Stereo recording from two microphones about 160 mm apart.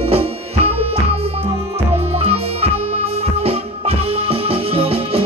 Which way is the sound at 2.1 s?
40° right (ahead or behind).